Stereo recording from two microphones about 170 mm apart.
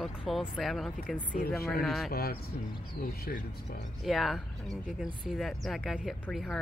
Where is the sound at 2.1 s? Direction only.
65° left (ahead or behind).